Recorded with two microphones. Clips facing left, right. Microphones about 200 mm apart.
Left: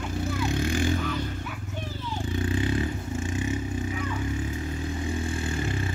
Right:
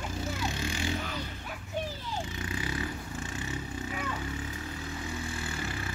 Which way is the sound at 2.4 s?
30° left (ahead or behind).